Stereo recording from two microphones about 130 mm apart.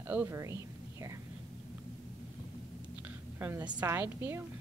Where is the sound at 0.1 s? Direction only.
20° right (ahead or behind).